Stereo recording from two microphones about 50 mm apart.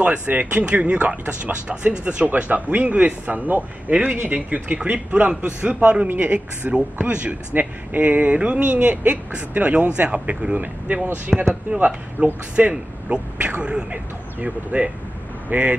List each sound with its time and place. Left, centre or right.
0.3 s speech: right
11.3 s speech: centre
12.2 s speech: right
15.5 s speech: right